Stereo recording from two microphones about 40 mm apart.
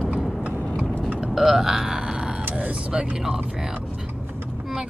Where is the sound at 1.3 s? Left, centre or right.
Centre.